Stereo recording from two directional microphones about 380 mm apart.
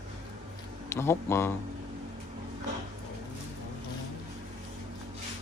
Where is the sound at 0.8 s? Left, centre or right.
Centre.